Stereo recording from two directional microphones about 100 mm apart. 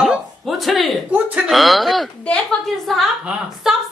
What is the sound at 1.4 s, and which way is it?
Speech, centre (ahead or behind).